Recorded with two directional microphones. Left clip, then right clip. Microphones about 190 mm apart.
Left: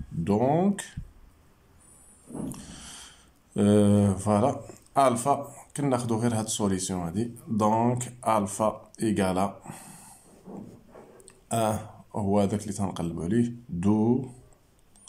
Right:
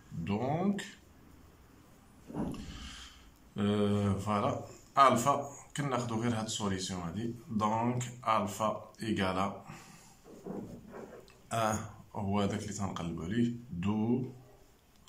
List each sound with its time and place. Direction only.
0.2 s speech: 35° left (ahead or behind)
2.5 s speech: 35° left (ahead or behind)
11.2 s speech: 25° left (ahead or behind)